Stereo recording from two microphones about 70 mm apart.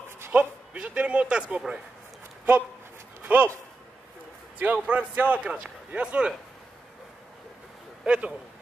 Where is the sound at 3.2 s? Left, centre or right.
Right.